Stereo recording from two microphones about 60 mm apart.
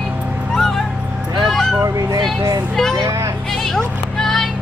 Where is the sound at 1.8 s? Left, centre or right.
Right.